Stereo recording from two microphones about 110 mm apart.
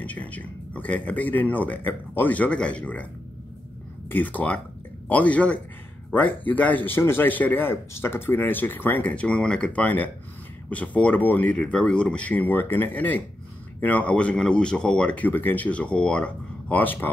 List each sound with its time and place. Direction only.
0.0 s speech: 15° left (ahead or behind)
4.1 s speech: 15° left (ahead or behind)